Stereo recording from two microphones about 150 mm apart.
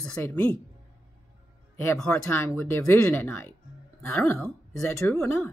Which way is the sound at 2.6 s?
15° left (ahead or behind).